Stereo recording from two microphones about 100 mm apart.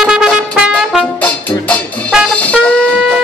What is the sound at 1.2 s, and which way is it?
Music, 15° left (ahead or behind).